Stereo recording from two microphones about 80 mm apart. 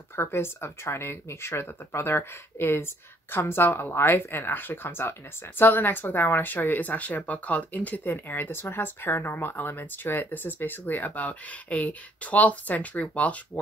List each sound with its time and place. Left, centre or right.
0.1 s speech: left